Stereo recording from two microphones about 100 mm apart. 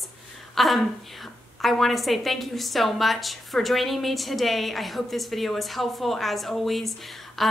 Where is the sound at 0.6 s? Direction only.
Centre (ahead or behind).